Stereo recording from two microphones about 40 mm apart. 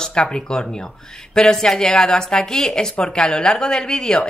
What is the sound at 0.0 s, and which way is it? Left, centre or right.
Speech, left.